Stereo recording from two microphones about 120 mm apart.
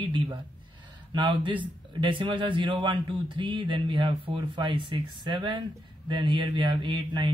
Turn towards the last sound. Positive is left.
turn(degrees=-40)  # may be behind; listen again after turning